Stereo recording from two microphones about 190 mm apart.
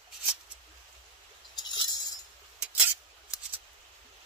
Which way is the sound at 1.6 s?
20° left (ahead or behind).